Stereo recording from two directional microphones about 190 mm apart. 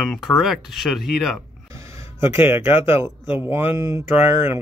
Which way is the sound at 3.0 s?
10° right (ahead or behind).